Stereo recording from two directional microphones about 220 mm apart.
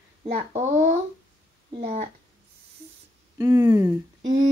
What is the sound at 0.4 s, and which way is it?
Speech, 30° right (ahead or behind).